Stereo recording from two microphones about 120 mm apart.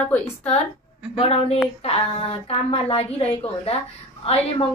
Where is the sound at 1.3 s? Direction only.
55° left (ahead or behind).